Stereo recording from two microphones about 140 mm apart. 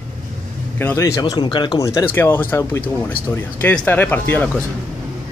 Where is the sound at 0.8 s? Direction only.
20° left (ahead or behind); by 1.8 s 35° left (ahead or behind).